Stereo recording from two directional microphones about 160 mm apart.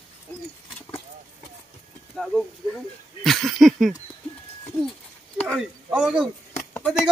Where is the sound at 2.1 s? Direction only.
Centre (ahead or behind).